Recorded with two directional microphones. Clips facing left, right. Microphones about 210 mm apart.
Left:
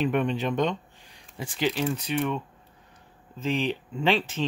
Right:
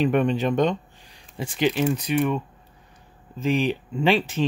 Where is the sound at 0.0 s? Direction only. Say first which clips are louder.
Right 4 dB; 40° right (ahead or behind).